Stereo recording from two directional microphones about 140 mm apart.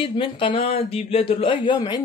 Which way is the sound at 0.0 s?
40° left (ahead or behind).